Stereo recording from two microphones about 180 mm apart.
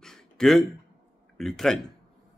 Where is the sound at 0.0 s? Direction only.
Centre (ahead or behind).